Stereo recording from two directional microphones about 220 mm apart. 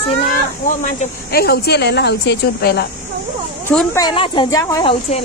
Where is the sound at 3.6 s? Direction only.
5° left (ahead or behind).